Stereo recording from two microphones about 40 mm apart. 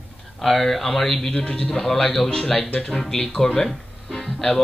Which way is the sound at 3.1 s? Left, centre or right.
Centre.